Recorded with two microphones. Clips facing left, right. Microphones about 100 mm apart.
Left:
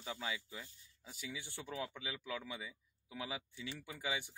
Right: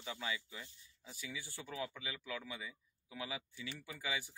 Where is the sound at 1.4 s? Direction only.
20° left (ahead or behind).